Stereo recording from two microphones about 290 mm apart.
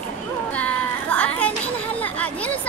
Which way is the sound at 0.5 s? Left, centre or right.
Centre.